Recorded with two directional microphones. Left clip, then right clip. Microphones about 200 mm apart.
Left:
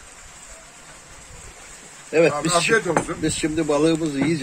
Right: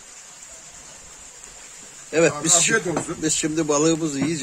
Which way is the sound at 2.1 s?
20° right (ahead or behind).